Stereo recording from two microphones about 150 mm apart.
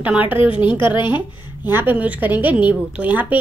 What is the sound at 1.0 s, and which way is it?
Speech, 30° left (ahead or behind).